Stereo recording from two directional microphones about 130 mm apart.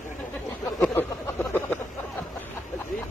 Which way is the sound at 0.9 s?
20° left (ahead or behind).